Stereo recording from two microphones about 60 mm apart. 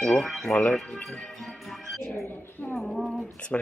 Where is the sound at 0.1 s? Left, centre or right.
Centre.